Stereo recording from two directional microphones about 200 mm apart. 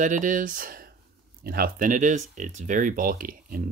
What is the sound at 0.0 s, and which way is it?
Speech, 40° right (ahead or behind).